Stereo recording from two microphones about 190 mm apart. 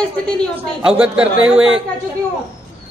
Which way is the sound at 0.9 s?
5° right (ahead or behind).